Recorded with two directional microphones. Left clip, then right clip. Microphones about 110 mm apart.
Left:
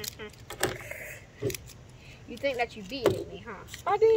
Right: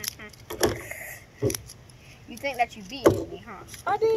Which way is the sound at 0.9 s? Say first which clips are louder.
Right 2 dB; 40° left (ahead or behind).